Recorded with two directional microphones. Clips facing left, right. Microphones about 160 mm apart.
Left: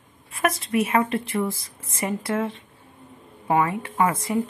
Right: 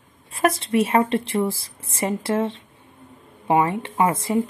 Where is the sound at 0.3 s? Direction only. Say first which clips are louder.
Right 3 dB; 30° right (ahead or behind).